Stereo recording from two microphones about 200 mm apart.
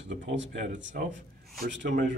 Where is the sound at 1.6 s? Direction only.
60° right (ahead or behind).